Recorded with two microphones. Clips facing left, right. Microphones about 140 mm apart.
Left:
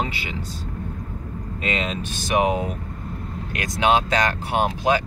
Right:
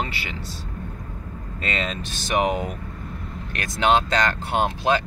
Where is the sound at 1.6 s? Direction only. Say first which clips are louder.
Left 2 dB; 10° left (ahead or behind).